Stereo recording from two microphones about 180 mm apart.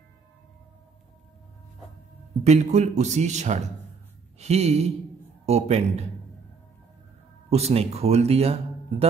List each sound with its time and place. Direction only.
2.4 s speech: 40° right (ahead or behind)
7.4 s speech: 35° right (ahead or behind)